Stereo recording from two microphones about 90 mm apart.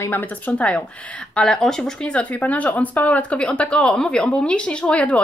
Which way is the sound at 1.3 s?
5° left (ahead or behind).